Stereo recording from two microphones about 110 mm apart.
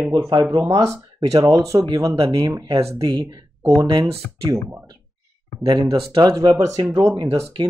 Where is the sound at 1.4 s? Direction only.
30° right (ahead or behind).